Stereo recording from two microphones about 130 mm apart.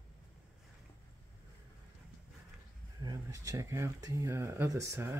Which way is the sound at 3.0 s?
30° right (ahead or behind).